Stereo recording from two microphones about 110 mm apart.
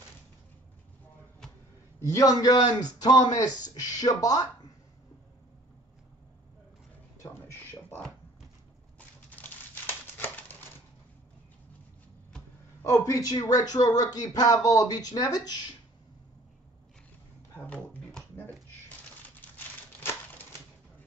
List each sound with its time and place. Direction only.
2.0 s speech: 30° left (ahead or behind)
9.3 s crumpling: 15° left (ahead or behind)
12.8 s speech: 30° left (ahead or behind)
18.3 s crumpling: 15° left (ahead or behind)